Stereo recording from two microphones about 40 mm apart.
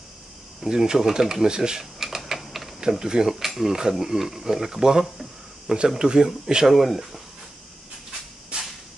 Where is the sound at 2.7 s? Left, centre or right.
Centre.